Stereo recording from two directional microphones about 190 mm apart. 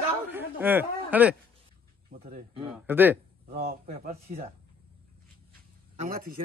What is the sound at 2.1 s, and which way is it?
Speech, 50° right (ahead or behind).